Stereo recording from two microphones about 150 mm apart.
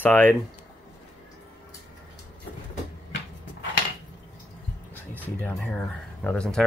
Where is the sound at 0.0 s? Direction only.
15° left (ahead or behind).